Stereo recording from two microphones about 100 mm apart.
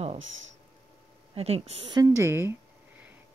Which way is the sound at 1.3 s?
90° right.